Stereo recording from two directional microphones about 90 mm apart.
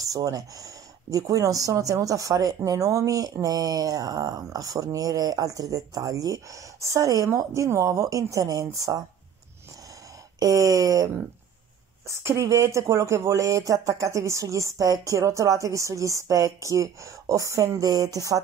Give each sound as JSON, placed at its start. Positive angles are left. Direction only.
{"t": 0.0, "sound": "speech", "side_deg": -40}
{"t": 10.4, "sound": "speech", "side_deg": -40}
{"t": 12.1, "sound": "speech", "side_deg": -35}